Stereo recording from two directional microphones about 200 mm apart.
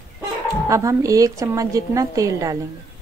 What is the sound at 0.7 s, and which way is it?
A woman's voice, 15° right (ahead or behind).